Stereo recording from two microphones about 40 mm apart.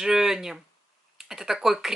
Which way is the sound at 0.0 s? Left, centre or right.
Centre.